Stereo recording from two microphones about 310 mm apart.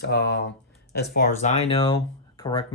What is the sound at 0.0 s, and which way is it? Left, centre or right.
Speech, left.